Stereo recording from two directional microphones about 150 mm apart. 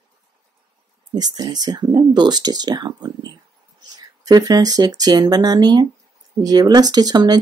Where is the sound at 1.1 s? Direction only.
25° right (ahead or behind).